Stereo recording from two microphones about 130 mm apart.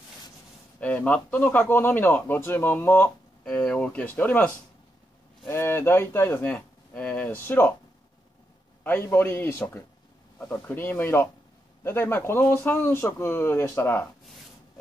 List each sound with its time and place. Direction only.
0.7 s a man's voice: 10° left (ahead or behind)
5.5 s speech: 20° left (ahead or behind)
8.8 s a man's voice: 15° left (ahead or behind)